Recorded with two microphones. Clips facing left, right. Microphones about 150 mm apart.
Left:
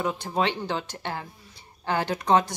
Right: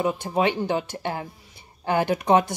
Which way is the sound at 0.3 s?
10° right (ahead or behind).